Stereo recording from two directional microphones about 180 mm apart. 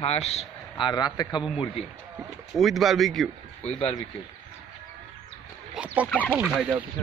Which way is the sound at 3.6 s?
35° left (ahead or behind).